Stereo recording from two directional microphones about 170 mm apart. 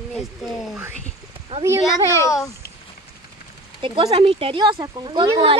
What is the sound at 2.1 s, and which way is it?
Speech, 20° left (ahead or behind).